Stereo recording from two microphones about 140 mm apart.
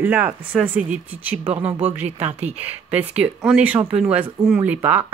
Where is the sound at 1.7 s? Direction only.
50° right (ahead or behind).